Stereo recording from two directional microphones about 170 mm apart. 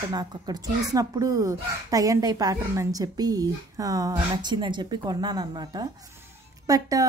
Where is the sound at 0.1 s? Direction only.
20° right (ahead or behind).